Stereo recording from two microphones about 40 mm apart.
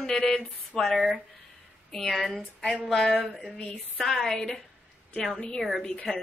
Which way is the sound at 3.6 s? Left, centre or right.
Left.